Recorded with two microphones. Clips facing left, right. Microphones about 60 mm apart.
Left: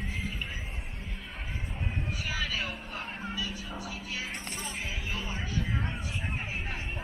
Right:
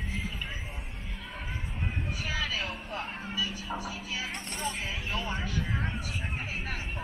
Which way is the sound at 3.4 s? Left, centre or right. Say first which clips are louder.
Right 3 dB; right.